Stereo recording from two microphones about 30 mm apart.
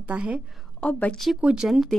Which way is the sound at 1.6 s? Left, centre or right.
Right.